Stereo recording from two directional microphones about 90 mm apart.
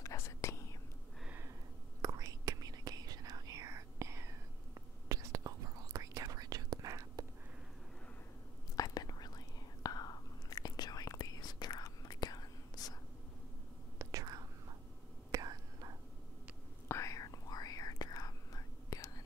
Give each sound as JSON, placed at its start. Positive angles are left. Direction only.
{"t": 0.0, "sound": "whispering", "side_deg": 35}
{"t": 2.0, "sound": "whispering", "side_deg": -45}
{"t": 8.7, "sound": "whispering", "side_deg": 45}
{"t": 13.9, "sound": "whispering", "side_deg": -45}
{"t": 16.8, "sound": "whispering", "side_deg": 35}